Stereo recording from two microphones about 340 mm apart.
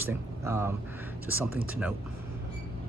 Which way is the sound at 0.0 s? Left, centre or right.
Centre.